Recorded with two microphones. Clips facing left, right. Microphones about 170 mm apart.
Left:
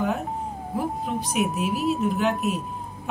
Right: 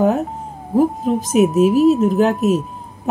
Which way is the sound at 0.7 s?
40° right (ahead or behind).